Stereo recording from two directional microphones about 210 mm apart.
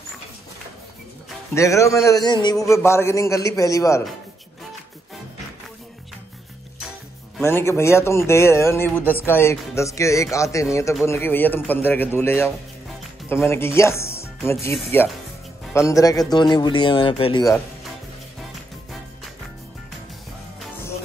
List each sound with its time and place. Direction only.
1.5 s speech: 15° left (ahead or behind)
7.4 s speech: 10° left (ahead or behind)